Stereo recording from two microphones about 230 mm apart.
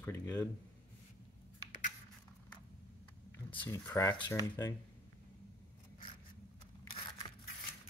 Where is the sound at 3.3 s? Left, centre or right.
Centre.